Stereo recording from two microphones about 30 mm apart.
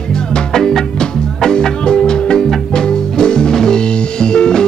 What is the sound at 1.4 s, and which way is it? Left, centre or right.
Music, left.